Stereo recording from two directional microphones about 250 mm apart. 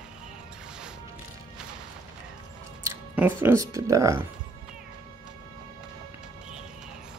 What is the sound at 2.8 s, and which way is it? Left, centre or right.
Speech, centre.